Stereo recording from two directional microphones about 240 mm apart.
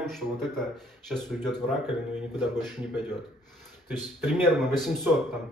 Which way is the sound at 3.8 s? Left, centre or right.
Centre.